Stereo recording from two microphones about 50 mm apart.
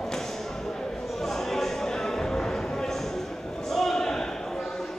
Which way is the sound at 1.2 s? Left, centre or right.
Centre.